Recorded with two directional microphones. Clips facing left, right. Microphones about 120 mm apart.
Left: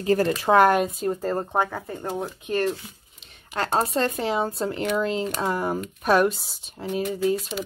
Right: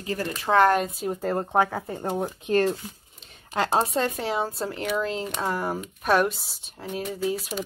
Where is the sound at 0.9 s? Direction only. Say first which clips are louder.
Left 1 dB; 5° right (ahead or behind).